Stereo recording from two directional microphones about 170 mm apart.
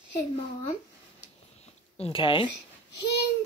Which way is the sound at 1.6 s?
35° left (ahead or behind).